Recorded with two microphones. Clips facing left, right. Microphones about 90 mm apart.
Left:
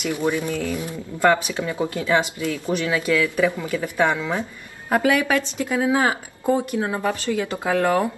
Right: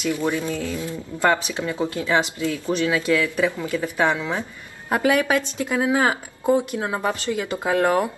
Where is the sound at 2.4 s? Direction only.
20° left (ahead or behind).